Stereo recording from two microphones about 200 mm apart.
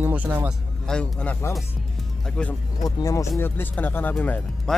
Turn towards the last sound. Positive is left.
turn(degrees=10)  # may be behind; listen again after turning